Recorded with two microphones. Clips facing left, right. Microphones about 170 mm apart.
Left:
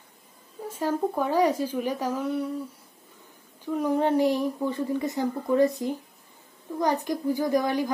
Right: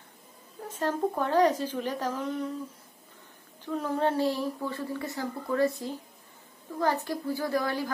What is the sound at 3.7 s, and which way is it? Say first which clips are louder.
A woman's voice: left 4 dB; 15° left (ahead or behind).